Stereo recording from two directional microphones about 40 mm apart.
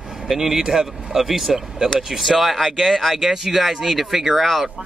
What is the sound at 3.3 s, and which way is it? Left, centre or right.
Speech, centre.